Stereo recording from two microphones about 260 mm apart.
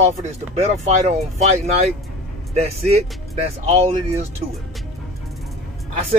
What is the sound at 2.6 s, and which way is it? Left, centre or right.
Speech, right.